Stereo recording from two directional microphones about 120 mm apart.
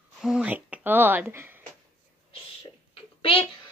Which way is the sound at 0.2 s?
10° right (ahead or behind).